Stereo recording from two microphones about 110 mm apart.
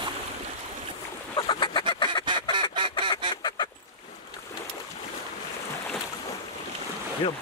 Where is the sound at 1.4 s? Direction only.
45° left (ahead or behind).